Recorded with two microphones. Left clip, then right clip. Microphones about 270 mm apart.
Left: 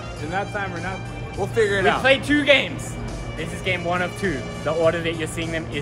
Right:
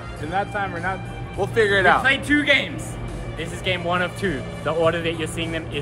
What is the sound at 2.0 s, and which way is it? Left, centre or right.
Speech, left.